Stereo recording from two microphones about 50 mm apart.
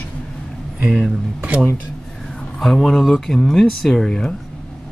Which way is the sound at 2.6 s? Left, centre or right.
Centre.